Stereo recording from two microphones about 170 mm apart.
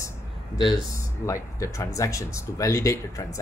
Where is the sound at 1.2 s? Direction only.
20° left (ahead or behind).